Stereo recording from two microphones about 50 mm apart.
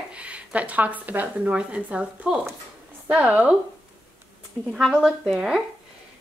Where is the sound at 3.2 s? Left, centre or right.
Right.